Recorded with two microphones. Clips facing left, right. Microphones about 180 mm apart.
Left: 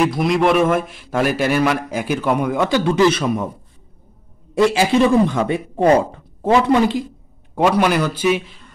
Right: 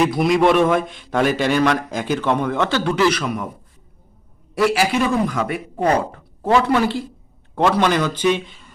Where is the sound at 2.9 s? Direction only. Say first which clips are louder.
Left 3 dB; 25° left (ahead or behind).